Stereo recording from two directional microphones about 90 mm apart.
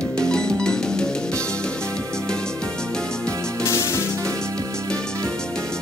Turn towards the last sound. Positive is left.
turn(degrees=30)  # may be behind; listen again after turning